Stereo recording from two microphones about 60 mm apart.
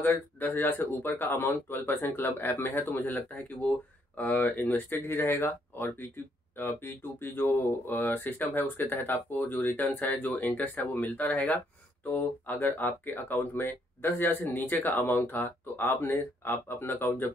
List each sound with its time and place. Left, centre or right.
0.0 s speech: left